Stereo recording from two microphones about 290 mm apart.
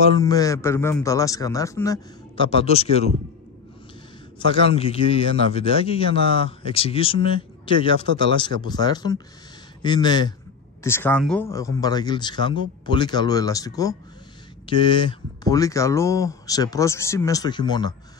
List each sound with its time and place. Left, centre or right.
0.2 s speech: centre
4.4 s a man's voice: centre